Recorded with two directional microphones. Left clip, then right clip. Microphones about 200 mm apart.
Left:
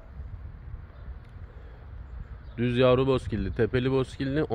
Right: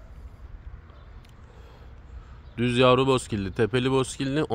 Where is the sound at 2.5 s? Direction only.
20° right (ahead or behind).